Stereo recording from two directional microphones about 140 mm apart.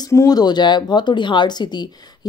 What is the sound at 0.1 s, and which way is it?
Speech, 25° left (ahead or behind).